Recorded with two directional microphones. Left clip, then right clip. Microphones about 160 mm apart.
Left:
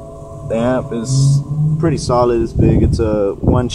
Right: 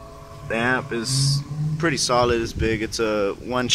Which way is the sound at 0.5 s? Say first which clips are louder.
Left 5 dB; 25° right (ahead or behind).